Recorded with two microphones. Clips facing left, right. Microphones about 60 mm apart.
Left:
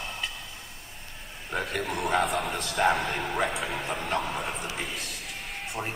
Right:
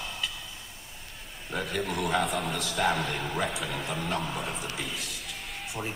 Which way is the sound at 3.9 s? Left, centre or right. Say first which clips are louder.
Left 2 dB; left.